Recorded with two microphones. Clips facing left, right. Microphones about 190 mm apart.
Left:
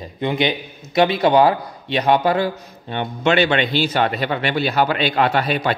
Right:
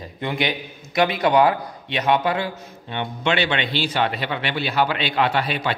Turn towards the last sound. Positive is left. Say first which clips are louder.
# left 4 dB
turn(degrees=45)  # may be behind; listen again after turning